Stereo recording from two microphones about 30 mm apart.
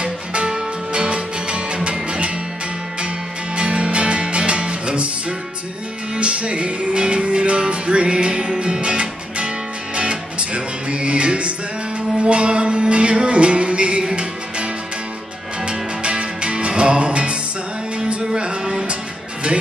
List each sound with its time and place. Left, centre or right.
0.0 s music: right
3.5 s music: right
6.1 s music: right